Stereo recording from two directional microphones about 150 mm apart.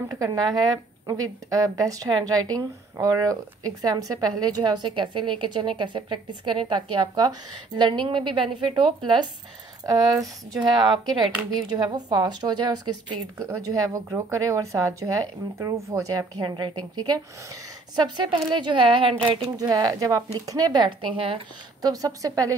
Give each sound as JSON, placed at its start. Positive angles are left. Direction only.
{"t": 0.1, "sound": "a woman's voice", "side_deg": -25}
{"t": 10.5, "sound": "a woman's voice", "side_deg": -30}